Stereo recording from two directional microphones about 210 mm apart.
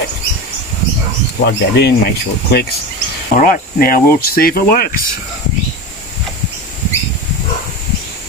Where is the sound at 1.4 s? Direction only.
50° left (ahead or behind).